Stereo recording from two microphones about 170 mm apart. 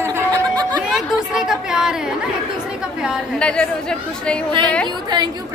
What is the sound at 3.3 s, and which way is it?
Speech, 5° left (ahead or behind).